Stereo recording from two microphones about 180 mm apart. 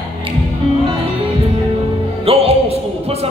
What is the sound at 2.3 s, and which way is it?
Music, 35° right (ahead or behind).